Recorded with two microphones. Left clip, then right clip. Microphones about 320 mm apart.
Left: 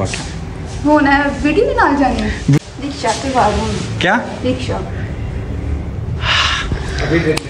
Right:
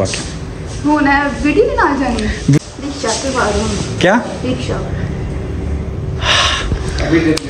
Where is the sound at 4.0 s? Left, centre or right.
Centre.